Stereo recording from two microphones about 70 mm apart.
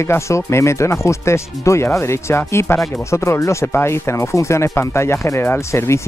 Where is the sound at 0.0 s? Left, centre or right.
Left.